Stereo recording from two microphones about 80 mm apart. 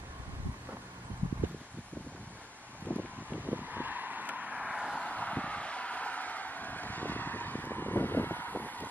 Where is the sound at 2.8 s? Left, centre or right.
Centre.